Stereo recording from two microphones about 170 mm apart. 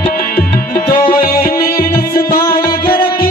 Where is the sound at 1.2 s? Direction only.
60° left (ahead or behind).